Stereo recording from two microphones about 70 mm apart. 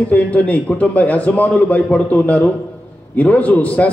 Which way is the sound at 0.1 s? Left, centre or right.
Left.